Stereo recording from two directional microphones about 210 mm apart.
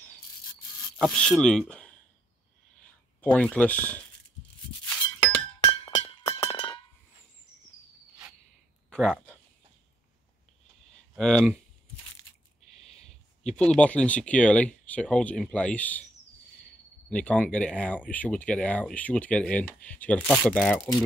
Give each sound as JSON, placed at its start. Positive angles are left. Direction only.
{"t": 0.9, "sound": "speech", "side_deg": 0}
{"t": 3.2, "sound": "speech", "side_deg": 5}
{"t": 5.6, "sound": "music", "side_deg": 25}
{"t": 8.9, "sound": "a sound", "side_deg": 5}
{"t": 11.1, "sound": "speech", "side_deg": 0}
{"t": 12.7, "sound": "a sound", "side_deg": 30}
{"t": 13.6, "sound": "speech", "side_deg": 5}
{"t": 17.1, "sound": "speech", "side_deg": 5}